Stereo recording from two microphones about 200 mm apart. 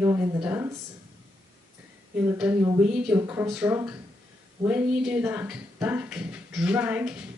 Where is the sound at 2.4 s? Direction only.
5° right (ahead or behind).